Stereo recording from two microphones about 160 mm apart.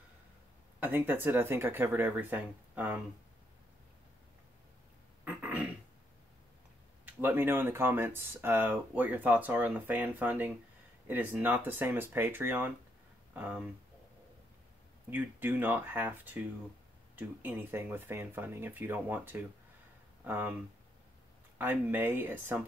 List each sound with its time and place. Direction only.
0.7 s speech: 10° right (ahead or behind)
5.2 s a sound: 10° right (ahead or behind)
7.2 s speech: 15° right (ahead or behind)
15.0 s speech: 10° right (ahead or behind)
21.5 s speech: 10° right (ahead or behind)